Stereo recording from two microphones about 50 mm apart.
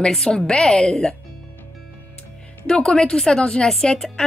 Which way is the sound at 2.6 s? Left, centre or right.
Centre.